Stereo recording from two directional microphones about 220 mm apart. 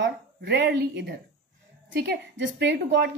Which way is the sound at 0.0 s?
50° right (ahead or behind).